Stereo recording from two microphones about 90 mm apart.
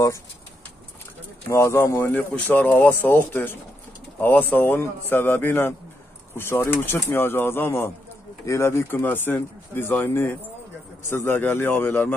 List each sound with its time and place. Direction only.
1.5 s speech: 30° left (ahead or behind)